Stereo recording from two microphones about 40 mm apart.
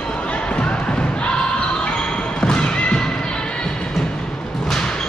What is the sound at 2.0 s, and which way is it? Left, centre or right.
Basketball bounce, left.